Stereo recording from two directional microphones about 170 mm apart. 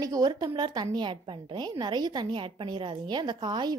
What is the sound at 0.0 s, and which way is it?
A woman's voice, 20° right (ahead or behind).